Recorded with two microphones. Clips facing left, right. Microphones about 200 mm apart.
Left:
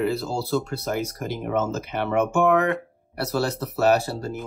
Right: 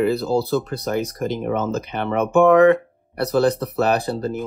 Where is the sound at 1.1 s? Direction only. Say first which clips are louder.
Right 3 dB; 55° right (ahead or behind).